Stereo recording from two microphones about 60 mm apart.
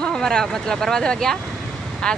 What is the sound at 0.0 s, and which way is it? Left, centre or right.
Speech, centre.